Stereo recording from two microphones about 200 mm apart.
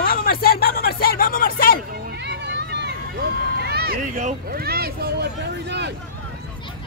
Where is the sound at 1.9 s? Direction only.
55° right (ahead or behind).